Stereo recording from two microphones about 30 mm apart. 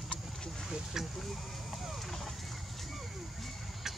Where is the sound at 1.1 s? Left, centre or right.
Centre.